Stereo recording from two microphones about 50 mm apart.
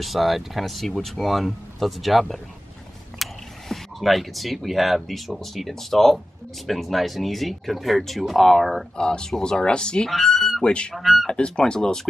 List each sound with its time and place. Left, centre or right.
0.0 s speech: centre
8.9 s speech: centre
10.0 s speech: centre
10.6 s speech: centre
11.0 s speech: centre
11.2 s speech: centre